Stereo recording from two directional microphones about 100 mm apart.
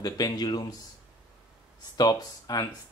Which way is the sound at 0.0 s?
40° left (ahead or behind).